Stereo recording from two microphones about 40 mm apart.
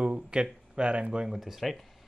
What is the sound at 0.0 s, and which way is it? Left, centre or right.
Speech, right.